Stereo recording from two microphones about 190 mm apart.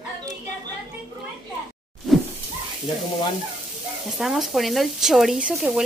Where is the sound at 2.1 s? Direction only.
Centre (ahead or behind).